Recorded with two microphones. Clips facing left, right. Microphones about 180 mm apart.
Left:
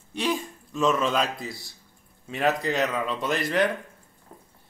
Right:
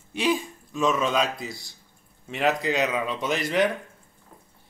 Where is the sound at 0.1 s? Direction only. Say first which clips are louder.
Right 3 dB; 5° right (ahead or behind).